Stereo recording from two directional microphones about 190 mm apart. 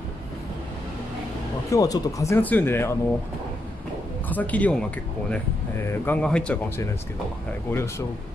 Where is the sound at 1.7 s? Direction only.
20° left (ahead or behind).